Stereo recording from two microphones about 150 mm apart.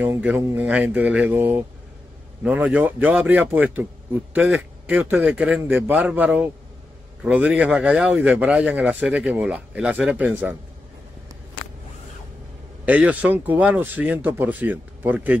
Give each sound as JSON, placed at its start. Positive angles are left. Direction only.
{"t": 0.0, "sound": "a man's voice", "side_deg": -10}
{"t": 12.8, "sound": "a man's voice", "side_deg": -10}